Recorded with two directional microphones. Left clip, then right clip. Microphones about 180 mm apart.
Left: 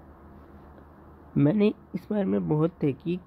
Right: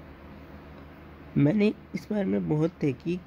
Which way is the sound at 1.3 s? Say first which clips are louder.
Left 1 dB; 20° left (ahead or behind).